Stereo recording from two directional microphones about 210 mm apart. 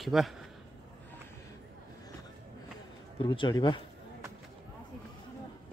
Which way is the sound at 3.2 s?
20° left (ahead or behind).